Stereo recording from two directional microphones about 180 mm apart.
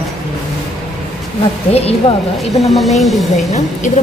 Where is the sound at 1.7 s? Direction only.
35° left (ahead or behind).